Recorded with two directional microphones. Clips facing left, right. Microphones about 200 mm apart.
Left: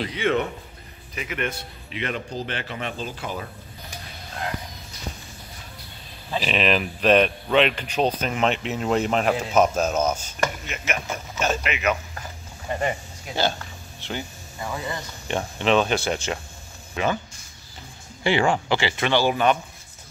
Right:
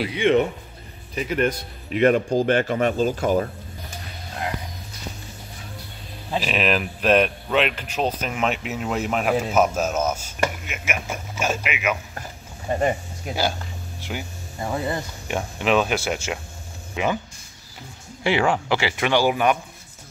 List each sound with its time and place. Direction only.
0.0 s a man's voice: 15° right (ahead or behind)
1.1 s speech: 35° right (ahead or behind)
6.3 s speech: 5° right (ahead or behind)
12.6 s speech: 30° right (ahead or behind)
14.0 s a man's voice: 10° right (ahead or behind)
14.6 s speech: 25° right (ahead or behind)
15.2 s a man's voice: 5° right (ahead or behind)
18.2 s a man's voice: 5° right (ahead or behind)